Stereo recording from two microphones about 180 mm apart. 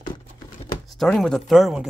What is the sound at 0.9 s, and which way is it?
Speech, centre (ahead or behind).